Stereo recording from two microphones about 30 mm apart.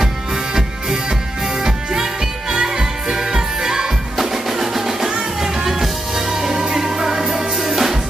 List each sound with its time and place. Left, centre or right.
2.5 s music: right